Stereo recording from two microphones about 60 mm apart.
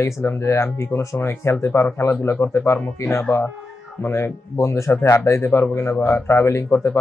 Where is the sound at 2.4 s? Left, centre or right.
Left.